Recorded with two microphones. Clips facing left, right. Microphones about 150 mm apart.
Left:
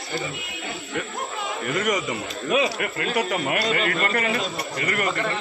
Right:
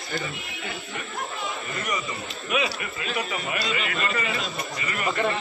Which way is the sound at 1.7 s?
90° left.